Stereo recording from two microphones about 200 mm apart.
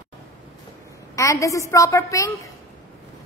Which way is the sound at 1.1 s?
15° left (ahead or behind).